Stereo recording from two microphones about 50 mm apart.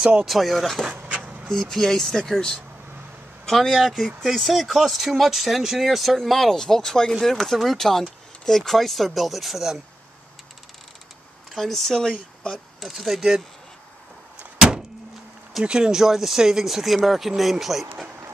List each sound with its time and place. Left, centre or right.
0.2 s speech: centre
1.0 s a sound: right
1.5 s speech: centre
11.5 s speech: centre
12.8 s speech: centre
15.6 s speech: centre